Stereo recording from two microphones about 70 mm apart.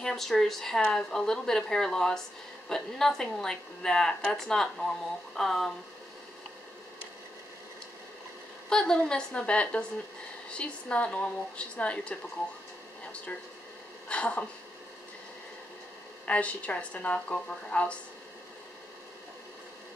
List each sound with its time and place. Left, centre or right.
0.0 s a woman's voice: centre
8.6 s a woman's voice: centre
14.0 s a woman's voice: centre
16.3 s a woman's voice: centre